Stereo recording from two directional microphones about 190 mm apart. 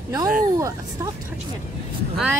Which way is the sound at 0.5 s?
15° right (ahead or behind).